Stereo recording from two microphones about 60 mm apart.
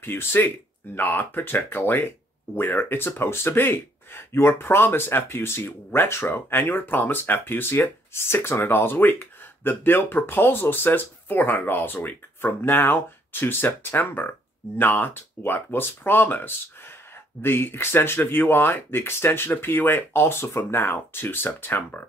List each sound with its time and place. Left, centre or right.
0.0 s speech: left